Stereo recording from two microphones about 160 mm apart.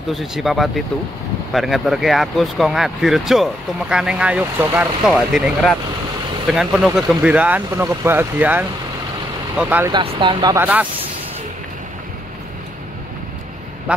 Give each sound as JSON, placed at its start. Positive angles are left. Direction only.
{"t": 0.1, "sound": "speech", "side_deg": 0}
{"t": 9.8, "sound": "speech", "side_deg": -30}
{"t": 10.5, "sound": "speech", "side_deg": -10}
{"t": 13.9, "sound": "quack", "side_deg": -10}